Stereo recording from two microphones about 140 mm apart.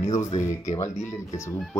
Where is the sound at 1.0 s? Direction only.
20° left (ahead or behind).